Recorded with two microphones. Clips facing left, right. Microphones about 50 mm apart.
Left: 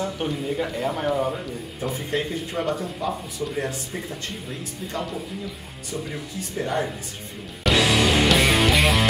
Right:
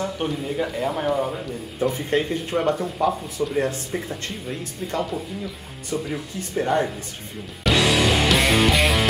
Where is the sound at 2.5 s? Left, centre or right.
Centre.